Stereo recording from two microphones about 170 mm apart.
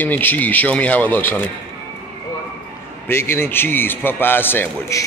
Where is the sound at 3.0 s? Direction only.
15° left (ahead or behind).